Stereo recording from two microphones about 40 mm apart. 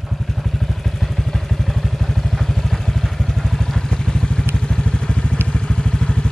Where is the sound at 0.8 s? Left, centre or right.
Centre.